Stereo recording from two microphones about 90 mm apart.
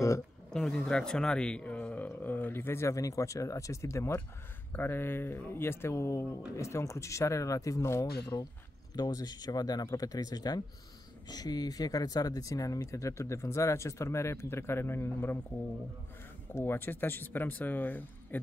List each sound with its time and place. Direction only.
0.5 s speech: 5° left (ahead or behind); by 8.1 s 35° left (ahead or behind)
8.3 s speech: 45° left (ahead or behind); by 15.3 s 25° left (ahead or behind)
16.5 s speech: 25° left (ahead or behind)